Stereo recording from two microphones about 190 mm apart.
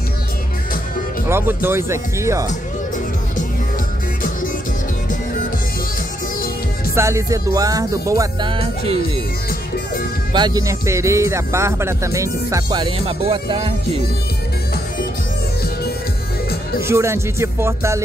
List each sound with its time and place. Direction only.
1.3 s speech: 10° right (ahead or behind)
7.0 s speech: 15° right (ahead or behind)
10.3 s speech: 20° right (ahead or behind)
16.8 s speech: 15° right (ahead or behind)